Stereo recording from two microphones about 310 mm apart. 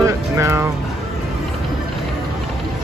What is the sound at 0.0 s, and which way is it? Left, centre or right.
Speech, centre.